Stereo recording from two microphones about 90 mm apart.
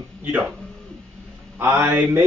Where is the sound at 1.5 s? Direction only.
25° right (ahead or behind).